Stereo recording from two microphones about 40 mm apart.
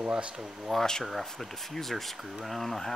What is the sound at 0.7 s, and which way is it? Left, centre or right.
Speech, centre.